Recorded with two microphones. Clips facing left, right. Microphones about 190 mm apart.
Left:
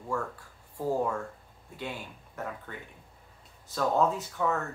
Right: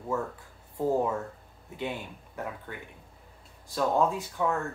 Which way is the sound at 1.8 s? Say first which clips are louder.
Right 4 dB; 15° right (ahead or behind).